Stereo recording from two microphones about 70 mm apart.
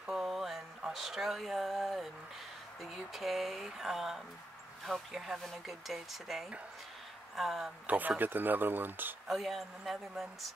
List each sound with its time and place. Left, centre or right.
0.0 s a sound: centre
2.8 s speech: centre
7.8 s speech: right
9.3 s speech: centre